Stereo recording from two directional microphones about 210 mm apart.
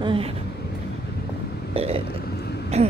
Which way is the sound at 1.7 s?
25° right (ahead or behind).